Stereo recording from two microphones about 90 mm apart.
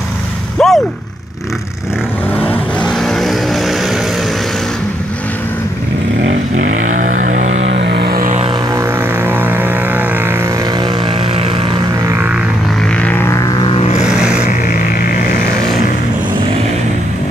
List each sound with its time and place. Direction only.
0.6 s a sound: 10° left (ahead or behind)
2.3 s vehicle: 20° left (ahead or behind)
3.0 s vehicle: centre (ahead or behind)
8.7 s vehicle: 25° right (ahead or behind)
12.9 s vehicle: 20° left (ahead or behind)
14.0 s vehicle: 10° right (ahead or behind)